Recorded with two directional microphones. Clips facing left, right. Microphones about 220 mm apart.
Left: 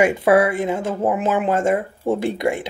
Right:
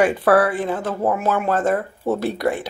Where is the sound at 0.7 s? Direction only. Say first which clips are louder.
Left 1 dB; 20° left (ahead or behind).